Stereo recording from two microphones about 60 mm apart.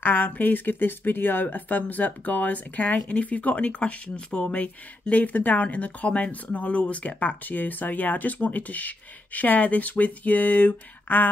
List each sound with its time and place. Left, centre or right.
0.0 s speech: left